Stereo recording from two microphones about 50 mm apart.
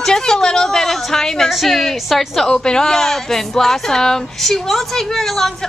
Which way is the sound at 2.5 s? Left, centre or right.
Centre.